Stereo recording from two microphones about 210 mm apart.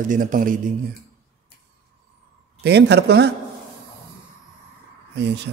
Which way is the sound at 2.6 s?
55° right (ahead or behind).